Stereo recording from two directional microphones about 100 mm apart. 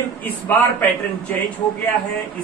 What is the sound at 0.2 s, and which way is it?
Speech, 20° left (ahead or behind).